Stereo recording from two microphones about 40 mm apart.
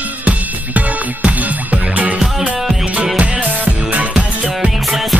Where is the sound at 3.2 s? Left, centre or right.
Right.